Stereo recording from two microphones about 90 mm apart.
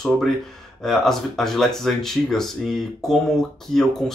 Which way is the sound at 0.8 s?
5° left (ahead or behind).